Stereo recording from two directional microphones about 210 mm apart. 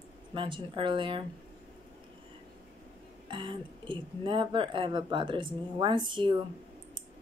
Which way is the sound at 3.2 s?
25° right (ahead or behind).